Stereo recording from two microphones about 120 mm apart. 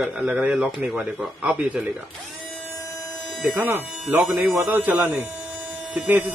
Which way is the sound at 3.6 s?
15° right (ahead or behind).